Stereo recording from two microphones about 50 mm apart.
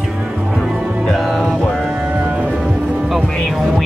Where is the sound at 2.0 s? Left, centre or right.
Right.